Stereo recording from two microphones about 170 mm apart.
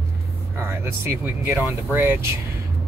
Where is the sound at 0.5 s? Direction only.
15° right (ahead or behind).